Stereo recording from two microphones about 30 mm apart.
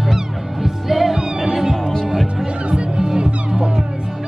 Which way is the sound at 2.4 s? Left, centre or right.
Right.